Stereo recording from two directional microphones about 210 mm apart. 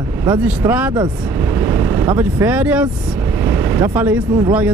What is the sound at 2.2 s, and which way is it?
Speech, 10° right (ahead or behind).